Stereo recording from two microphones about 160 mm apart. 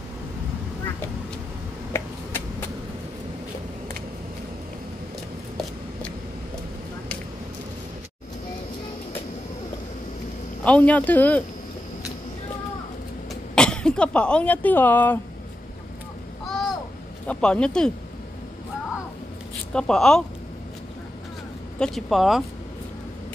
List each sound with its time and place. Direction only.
1.9 s finger snapping: 15° left (ahead or behind)
10.6 s speech: 10° left (ahead or behind)
13.3 s speech: 5° left (ahead or behind)
17.3 s speech: 5° left (ahead or behind)
19.7 s speech: 5° left (ahead or behind)
21.7 s speech: centre (ahead or behind)